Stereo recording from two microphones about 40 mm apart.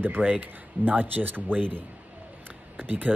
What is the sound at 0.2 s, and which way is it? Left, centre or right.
Speech, right.